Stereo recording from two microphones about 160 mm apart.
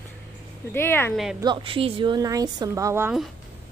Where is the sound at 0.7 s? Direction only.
15° left (ahead or behind).